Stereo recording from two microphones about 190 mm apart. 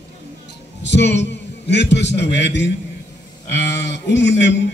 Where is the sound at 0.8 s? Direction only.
65° left (ahead or behind).